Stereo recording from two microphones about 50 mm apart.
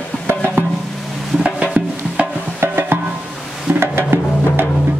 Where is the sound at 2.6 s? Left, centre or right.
Right.